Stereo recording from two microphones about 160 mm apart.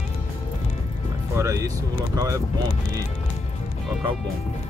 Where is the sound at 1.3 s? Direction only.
20° right (ahead or behind).